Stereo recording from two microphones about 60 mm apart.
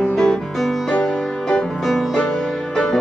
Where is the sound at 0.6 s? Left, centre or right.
Centre.